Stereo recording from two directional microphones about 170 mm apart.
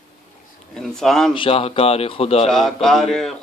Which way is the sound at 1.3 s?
35° left (ahead or behind).